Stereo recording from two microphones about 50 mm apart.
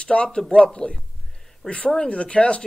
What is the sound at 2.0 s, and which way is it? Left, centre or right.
Speech, left.